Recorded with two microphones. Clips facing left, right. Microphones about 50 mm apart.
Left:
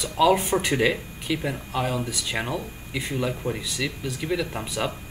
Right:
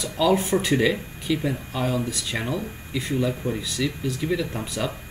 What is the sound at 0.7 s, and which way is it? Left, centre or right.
Speech, left.